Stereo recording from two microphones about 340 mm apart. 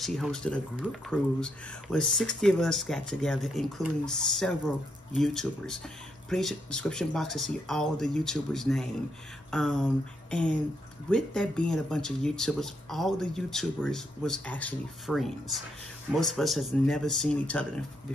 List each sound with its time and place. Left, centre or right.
0.0 s speech: centre